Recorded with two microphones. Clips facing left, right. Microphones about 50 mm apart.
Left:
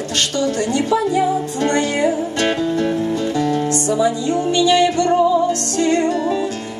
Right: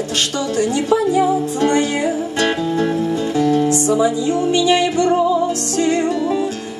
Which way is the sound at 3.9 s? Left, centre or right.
Right.